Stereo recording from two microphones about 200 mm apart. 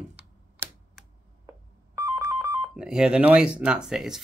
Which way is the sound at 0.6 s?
10° right (ahead or behind).